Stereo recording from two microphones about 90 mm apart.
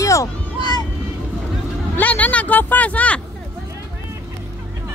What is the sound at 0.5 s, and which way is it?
Vehicle, 55° left (ahead or behind).